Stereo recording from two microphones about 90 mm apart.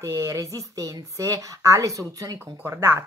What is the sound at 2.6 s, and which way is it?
Speech, 25° right (ahead or behind).